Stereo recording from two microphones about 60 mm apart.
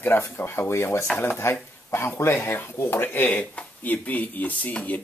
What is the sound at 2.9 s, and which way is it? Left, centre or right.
Speech, left.